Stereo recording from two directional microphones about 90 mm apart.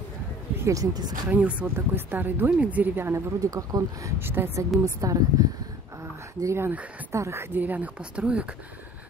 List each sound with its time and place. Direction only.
0.7 s speech: 45° right (ahead or behind)
1.3 s speech: 15° right (ahead or behind)
3.3 s speech: 40° right (ahead or behind)
4.2 s speech: 25° right (ahead or behind)
4.8 s speech: 40° right (ahead or behind)
6.4 s speech: 30° right (ahead or behind)
7.5 s speech: 20° right (ahead or behind)